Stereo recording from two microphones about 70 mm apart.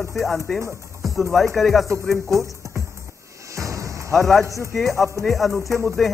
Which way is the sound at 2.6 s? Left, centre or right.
Right.